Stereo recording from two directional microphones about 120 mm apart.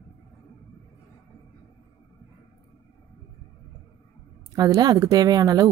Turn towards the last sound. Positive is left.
turn(degrees=-35)  # may be behind; listen again after turning